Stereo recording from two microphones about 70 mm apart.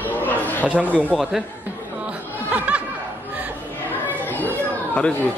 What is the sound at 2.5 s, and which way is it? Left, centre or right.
Snicker, centre.